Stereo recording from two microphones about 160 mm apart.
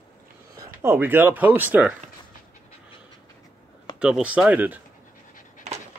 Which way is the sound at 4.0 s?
5° right (ahead or behind).